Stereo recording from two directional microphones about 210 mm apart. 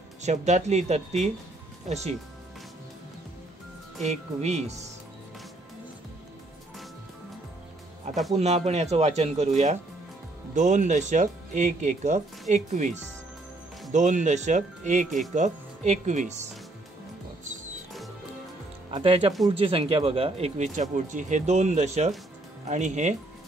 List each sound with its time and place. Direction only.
0.2 s speech: 35° right (ahead or behind)
4.0 s speech: 30° right (ahead or behind)
8.4 s speech: 30° right (ahead or behind)
18.9 s speech: 25° right (ahead or behind)